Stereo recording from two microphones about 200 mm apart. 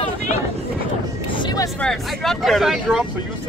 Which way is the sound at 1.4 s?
20° left (ahead or behind).